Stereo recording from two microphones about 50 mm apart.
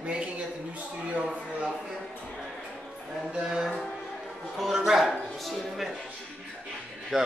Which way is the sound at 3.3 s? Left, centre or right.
Centre.